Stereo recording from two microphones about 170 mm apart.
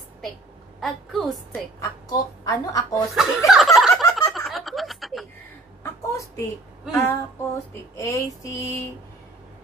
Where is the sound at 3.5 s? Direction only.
Centre (ahead or behind).